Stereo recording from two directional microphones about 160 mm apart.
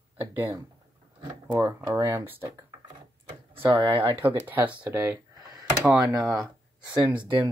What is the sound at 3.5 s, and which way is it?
Speech, 30° right (ahead or behind).